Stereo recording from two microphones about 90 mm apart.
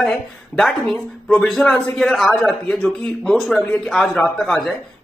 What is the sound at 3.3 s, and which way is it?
A man's voice, centre (ahead or behind).